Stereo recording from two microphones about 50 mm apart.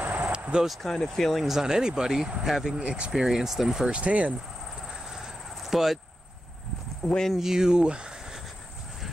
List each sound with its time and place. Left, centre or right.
0.0 s vehicle: right
0.3 s vehicle: centre
1.0 s speech: centre
1.6 s speech: centre
2.8 s speech: right
3.1 s speech: centre
3.9 s speech: right
4.8 s cricket: centre
7.0 s speech: centre
7.3 s speech: centre